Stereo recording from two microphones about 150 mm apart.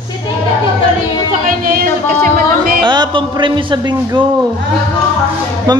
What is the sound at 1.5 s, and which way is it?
Music, 70° right (ahead or behind).